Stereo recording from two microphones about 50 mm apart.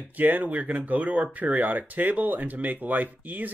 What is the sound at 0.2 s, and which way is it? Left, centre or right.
Speech, right.